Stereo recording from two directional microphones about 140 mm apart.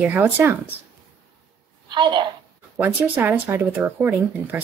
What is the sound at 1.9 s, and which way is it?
Speech, 35° right (ahead or behind).